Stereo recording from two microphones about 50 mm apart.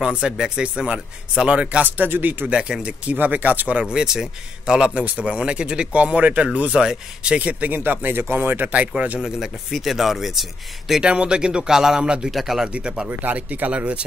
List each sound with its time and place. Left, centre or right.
0.2 s a man's voice: centre
1.9 s speech: right
2.4 s a man's voice: right
3.8 s a man's voice: centre
6.8 s speech: centre
7.3 s a man's voice: right
7.7 s speech: right
8.7 s a man's voice: right
9.2 s speech: centre
11.0 s speech: right
12.3 s speech: centre
12.6 s a man's voice: centre
13.2 s a man's voice: right